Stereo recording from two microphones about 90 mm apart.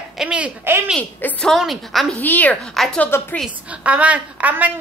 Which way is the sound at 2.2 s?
20° left (ahead or behind).